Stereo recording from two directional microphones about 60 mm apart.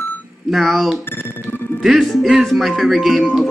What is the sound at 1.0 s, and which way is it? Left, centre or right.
Speech, left.